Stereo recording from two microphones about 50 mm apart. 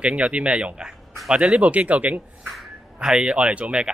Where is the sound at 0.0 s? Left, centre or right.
Right.